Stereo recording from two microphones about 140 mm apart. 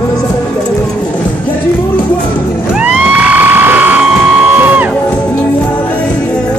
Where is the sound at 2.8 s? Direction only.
10° right (ahead or behind).